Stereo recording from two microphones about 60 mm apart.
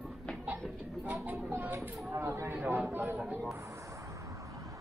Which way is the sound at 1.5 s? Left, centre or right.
Right.